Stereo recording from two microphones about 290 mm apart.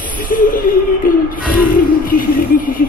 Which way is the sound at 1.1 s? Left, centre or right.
Left.